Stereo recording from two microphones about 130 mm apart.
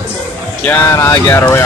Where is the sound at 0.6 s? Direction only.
15° left (ahead or behind).